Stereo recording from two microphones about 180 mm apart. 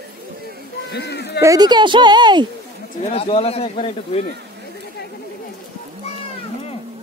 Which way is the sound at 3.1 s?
35° left (ahead or behind).